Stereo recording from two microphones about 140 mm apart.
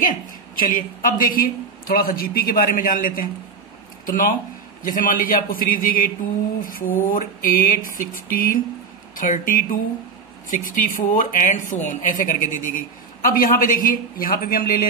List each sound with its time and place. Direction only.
0.6 s a man's voice: 80° left
4.0 s speech: 75° left (ahead or behind)
9.1 s speech: 75° left (ahead or behind)